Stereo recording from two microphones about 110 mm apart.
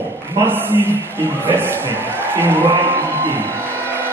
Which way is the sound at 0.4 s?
20° right (ahead or behind).